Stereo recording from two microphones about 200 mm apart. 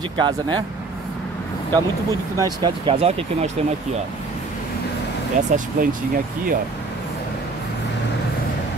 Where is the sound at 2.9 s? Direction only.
30° right (ahead or behind).